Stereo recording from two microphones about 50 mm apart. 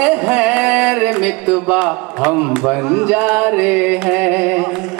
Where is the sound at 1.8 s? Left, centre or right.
Centre.